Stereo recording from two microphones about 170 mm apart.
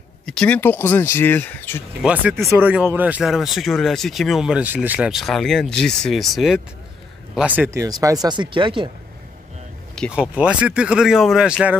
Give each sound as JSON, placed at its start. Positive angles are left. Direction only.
{"t": 0.3, "sound": "speech", "side_deg": 5}
{"t": 2.0, "sound": "speech", "side_deg": -5}
{"t": 10.1, "sound": "speech", "side_deg": -5}